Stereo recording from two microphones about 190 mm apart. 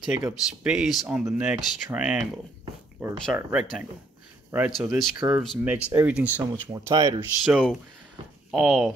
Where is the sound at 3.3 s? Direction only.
5° right (ahead or behind); by 7.2 s 20° right (ahead or behind).